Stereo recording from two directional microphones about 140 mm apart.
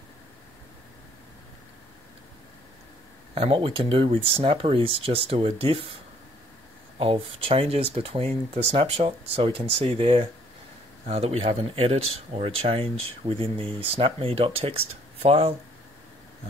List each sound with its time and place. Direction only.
3.3 s speech: 40° right (ahead or behind)
7.0 s speech: 40° right (ahead or behind)